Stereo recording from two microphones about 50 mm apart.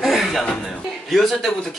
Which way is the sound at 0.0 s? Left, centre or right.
Centre.